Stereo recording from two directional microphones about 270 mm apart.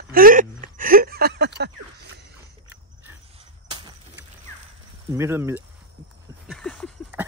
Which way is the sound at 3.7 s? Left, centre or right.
Right.